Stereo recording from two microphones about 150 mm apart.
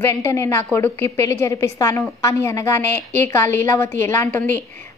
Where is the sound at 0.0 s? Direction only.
15° left (ahead or behind).